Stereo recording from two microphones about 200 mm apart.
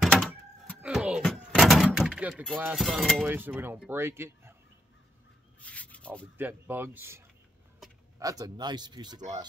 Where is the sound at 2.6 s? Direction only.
5° right (ahead or behind).